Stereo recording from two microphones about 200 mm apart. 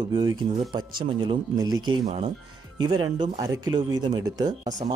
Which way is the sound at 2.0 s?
30° right (ahead or behind).